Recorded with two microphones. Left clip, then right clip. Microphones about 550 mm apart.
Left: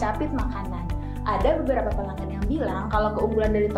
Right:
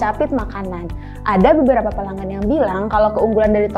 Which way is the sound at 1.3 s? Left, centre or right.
Right.